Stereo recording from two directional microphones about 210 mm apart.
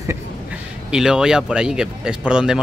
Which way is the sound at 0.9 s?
5° right (ahead or behind).